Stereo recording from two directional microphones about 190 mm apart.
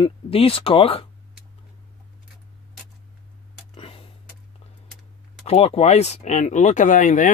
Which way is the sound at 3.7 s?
30° left (ahead or behind).